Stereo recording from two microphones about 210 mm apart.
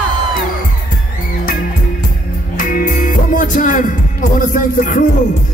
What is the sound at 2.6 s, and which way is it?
Music, 40° left (ahead or behind).